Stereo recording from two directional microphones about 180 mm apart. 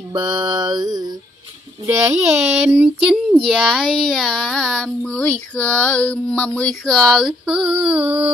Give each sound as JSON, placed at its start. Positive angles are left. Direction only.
{"t": 0.1, "sound": "mantra", "side_deg": -25}
{"t": 1.9, "sound": "speech", "side_deg": -15}